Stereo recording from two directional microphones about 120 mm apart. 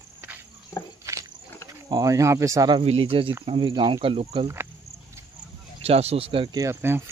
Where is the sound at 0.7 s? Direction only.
20° left (ahead or behind).